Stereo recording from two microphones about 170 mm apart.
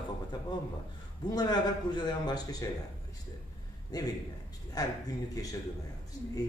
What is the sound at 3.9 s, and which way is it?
A man's voice, 20° left (ahead or behind).